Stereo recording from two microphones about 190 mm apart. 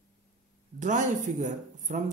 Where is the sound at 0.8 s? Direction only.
40° right (ahead or behind).